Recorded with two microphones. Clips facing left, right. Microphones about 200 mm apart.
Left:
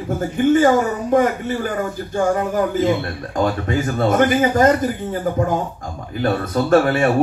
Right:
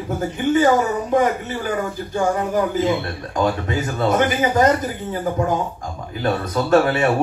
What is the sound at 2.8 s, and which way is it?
Speech, 50° left (ahead or behind).